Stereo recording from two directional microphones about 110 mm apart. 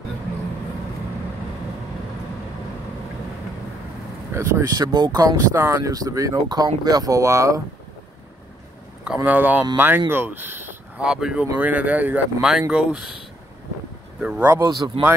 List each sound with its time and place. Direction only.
4.3 s speech: 25° right (ahead or behind)
4.8 s speech: 40° right (ahead or behind)
9.0 s speech: 10° right (ahead or behind)
11.1 s speech: 5° right (ahead or behind)
14.6 s speech: 40° right (ahead or behind)